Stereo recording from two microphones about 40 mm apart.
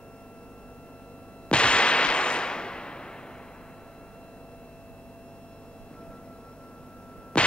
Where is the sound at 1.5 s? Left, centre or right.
Left.